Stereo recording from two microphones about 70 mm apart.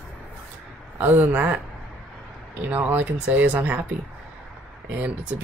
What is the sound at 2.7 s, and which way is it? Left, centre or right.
Speech, right.